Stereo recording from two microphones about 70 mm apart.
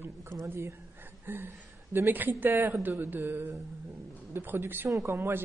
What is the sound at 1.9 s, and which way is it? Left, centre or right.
A woman's voice, right.